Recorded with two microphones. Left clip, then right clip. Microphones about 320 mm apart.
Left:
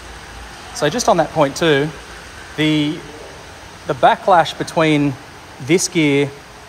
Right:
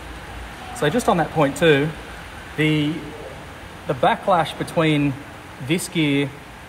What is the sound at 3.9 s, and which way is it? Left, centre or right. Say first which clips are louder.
Speech: left 6 dB; left.